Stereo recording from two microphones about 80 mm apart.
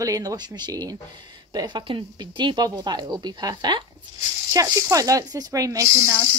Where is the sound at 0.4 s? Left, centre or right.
Right.